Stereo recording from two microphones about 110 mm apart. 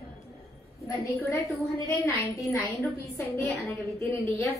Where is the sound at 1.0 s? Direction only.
30° left (ahead or behind).